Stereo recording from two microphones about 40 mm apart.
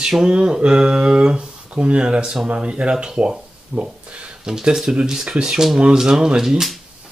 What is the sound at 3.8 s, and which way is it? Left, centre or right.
Speech, right.